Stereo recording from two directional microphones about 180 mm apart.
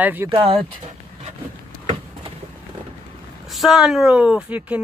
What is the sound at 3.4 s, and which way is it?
Speech, centre (ahead or behind).